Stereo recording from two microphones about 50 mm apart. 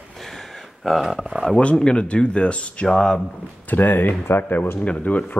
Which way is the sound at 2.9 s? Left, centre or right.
Centre.